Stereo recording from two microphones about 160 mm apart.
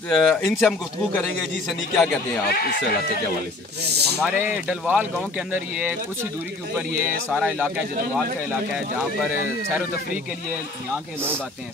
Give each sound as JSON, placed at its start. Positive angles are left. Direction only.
{"t": 0.1, "sound": "speech", "side_deg": 0}
{"t": 2.5, "sound": "speech", "side_deg": 80}
{"t": 3.8, "sound": "speech", "side_deg": -90}
{"t": 4.4, "sound": "speech", "side_deg": -10}
{"t": 7.0, "sound": "speech", "side_deg": -5}